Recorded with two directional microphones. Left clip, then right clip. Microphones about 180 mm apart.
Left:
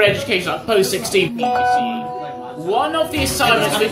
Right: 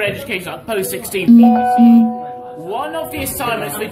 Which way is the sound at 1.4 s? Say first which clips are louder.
Right 4 dB; 25° left (ahead or behind).